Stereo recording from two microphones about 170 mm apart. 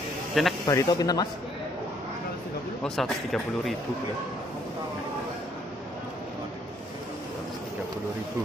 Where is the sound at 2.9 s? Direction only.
Centre (ahead or behind).